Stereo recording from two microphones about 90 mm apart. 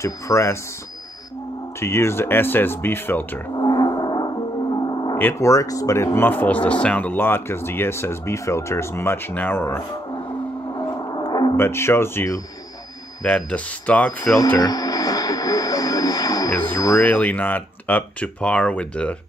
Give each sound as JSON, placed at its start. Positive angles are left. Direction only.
{"t": 0.0, "sound": "speech", "side_deg": 35}
{"t": 1.8, "sound": "speech", "side_deg": 30}
{"t": 3.5, "sound": "gong", "side_deg": 50}
{"t": 5.1, "sound": "speech", "side_deg": 30}
{"t": 6.1, "sound": "speech", "side_deg": 20}
{"t": 10.8, "sound": "gong", "side_deg": 50}
{"t": 11.5, "sound": "speech", "side_deg": 30}
{"t": 13.2, "sound": "speech", "side_deg": 15}
{"t": 14.6, "sound": "vehicle", "side_deg": 45}
{"t": 17.0, "sound": "speech", "side_deg": 15}